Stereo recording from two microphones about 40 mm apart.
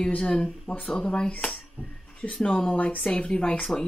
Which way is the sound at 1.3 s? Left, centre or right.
Left.